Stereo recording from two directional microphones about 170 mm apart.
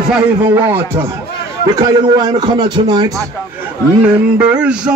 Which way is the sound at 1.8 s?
25° right (ahead or behind).